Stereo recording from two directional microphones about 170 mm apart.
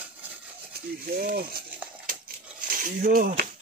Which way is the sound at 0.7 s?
65° right (ahead or behind).